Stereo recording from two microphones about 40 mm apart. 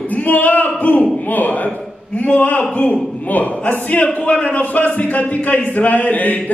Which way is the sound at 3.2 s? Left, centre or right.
Left.